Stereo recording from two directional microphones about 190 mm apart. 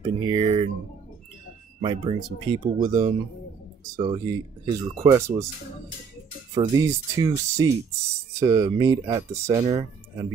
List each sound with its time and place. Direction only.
0.2 s speech: 25° right (ahead or behind)
1.8 s speech: 30° right (ahead or behind)
6.5 s speech: 20° right (ahead or behind)